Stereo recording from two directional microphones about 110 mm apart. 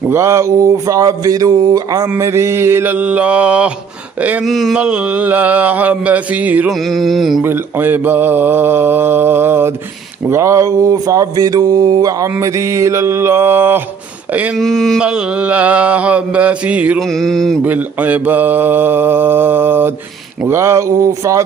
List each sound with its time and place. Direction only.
0.1 s speech: 25° right (ahead or behind)
2.1 s mantra: 25° right (ahead or behind)
4.5 s mantra: centre (ahead or behind)
4.7 s mantra: 10° right (ahead or behind)
6.7 s mantra: centre (ahead or behind)
7.4 s mantra: 20° right (ahead or behind)
14.6 s mantra: 5° left (ahead or behind)
15.0 s mantra: 10° right (ahead or behind)
17.0 s mantra: 5° left (ahead or behind)
17.6 s mantra: 15° right (ahead or behind)